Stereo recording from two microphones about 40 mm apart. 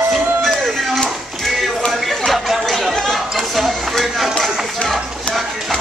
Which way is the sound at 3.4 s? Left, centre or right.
Centre.